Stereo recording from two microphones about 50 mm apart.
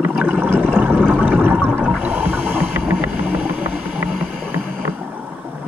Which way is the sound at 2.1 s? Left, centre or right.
Right.